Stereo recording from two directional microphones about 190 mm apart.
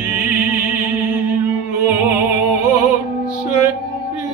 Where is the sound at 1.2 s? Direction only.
10° right (ahead or behind).